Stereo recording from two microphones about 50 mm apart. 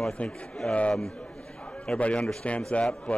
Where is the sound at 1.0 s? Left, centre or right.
Centre.